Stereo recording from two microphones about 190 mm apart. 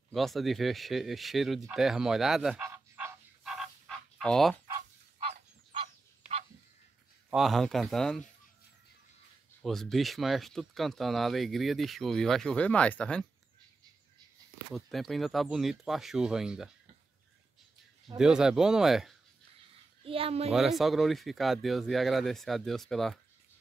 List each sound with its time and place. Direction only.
0.1 s speech: centre (ahead or behind)
2.6 s frog: 10° right (ahead or behind)
3.4 s dog: centre (ahead or behind)
5.2 s fowl: 30° right (ahead or behind)
7.2 s speech: centre (ahead or behind)
9.6 s speech: centre (ahead or behind)
14.7 s speech: centre (ahead or behind)
18.1 s speech: 5° right (ahead or behind)
20.0 s a child's voice: 30° right (ahead or behind)
20.5 s speech: centre (ahead or behind)